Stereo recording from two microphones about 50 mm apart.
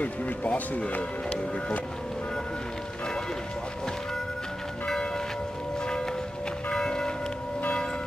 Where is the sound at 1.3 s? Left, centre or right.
Left.